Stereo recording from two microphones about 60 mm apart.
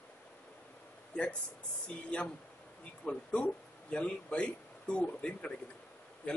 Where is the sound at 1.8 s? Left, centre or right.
Centre.